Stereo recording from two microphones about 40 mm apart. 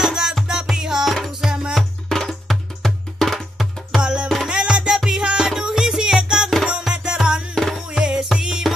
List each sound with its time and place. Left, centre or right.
0.0 s music: centre
1.0 s music: centre
4.0 s music: right
7.5 s music: centre
8.0 s music: right